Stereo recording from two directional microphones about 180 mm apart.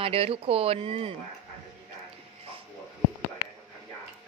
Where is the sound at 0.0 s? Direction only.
30° right (ahead or behind).